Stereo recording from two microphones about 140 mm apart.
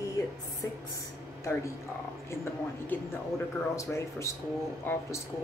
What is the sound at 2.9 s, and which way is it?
A woman's voice, 15° left (ahead or behind).